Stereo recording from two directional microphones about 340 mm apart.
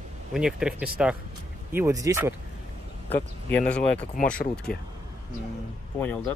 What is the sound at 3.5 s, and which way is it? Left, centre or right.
Speech, centre.